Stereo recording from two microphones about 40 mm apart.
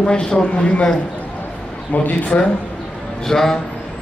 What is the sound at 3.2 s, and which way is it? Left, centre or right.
Speech, centre.